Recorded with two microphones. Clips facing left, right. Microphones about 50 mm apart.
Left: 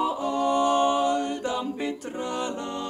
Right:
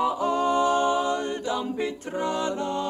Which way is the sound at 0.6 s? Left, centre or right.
Left.